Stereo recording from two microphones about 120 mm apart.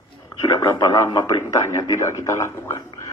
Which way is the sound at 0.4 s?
30° left (ahead or behind).